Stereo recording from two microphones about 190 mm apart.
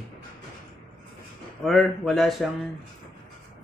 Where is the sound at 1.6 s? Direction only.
Centre (ahead or behind).